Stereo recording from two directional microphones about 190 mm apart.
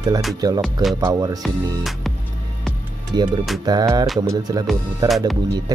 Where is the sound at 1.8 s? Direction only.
Centre (ahead or behind).